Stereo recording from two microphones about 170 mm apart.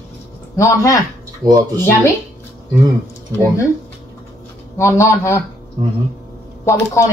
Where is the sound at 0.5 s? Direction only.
20° left (ahead or behind).